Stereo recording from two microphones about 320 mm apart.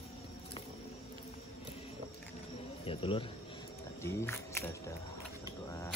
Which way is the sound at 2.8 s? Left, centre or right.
Centre.